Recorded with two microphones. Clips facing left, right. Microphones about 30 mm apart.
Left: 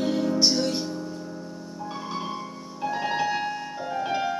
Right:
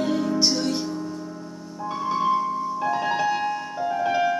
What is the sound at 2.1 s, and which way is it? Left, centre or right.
Music, centre.